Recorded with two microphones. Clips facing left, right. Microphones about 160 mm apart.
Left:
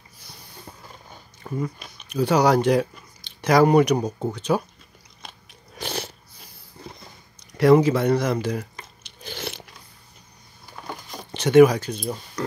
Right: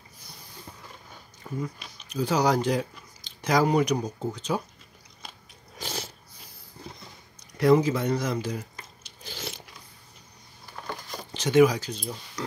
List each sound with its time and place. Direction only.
1.6 s speech: 60° left (ahead or behind)
5.8 s cat: 70° left (ahead or behind)
7.5 s crunch: 70° left (ahead or behind)
11.3 s speech: 60° left (ahead or behind)